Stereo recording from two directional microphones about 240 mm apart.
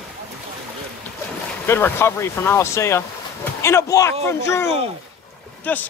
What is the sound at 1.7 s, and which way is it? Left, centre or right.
A man's voice, centre.